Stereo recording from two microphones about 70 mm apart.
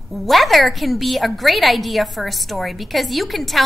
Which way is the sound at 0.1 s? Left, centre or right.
Centre.